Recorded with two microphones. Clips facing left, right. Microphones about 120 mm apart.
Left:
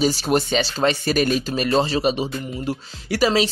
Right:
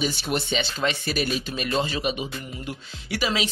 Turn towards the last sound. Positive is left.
turn(degrees=35)  # may be behind; listen again after turning